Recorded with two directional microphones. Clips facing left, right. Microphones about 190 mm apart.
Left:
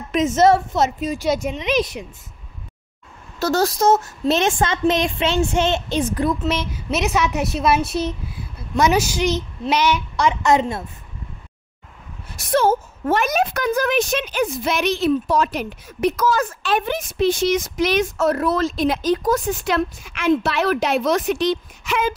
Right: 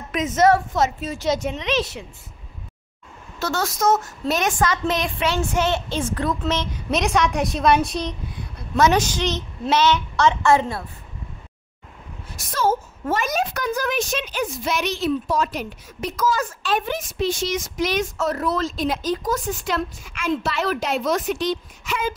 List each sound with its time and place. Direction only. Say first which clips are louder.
0.4 s a woman's voice: left 1 dB; 25° left (ahead or behind)
3.3 s a woman's voice: left 6 dB; 35° left (ahead or behind); by 10.8 s 20° left (ahead or behind)
13.1 s a woman's voice: left 4 dB; 60° left (ahead or behind)